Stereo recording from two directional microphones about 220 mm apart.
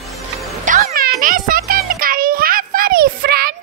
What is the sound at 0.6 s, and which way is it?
Music, 40° right (ahead or behind).